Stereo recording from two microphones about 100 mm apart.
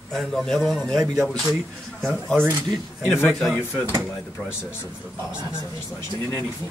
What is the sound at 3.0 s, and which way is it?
Speech, 25° left (ahead or behind).